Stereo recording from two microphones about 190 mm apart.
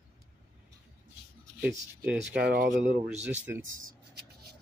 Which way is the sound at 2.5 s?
50° right (ahead or behind).